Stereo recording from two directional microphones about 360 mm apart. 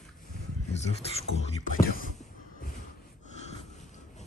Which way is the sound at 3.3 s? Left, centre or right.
Centre.